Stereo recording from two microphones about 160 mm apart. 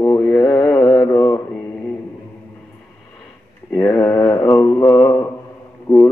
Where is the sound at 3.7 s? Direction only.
10° left (ahead or behind).